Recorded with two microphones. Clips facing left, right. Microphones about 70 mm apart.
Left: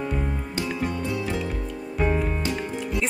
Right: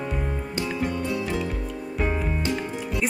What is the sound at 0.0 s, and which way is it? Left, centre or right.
Music, centre.